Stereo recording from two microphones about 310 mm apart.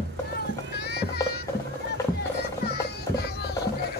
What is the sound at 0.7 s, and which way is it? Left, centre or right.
Music, left.